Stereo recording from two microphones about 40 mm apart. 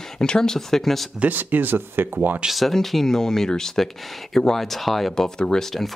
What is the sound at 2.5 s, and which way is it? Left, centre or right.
Speech, centre.